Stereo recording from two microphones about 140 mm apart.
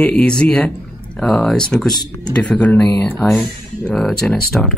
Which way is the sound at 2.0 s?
30° left (ahead or behind).